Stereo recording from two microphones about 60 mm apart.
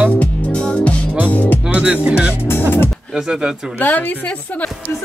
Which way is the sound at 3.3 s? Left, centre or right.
Centre.